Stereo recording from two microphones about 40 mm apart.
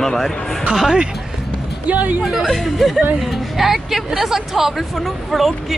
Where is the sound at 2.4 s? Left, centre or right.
Centre.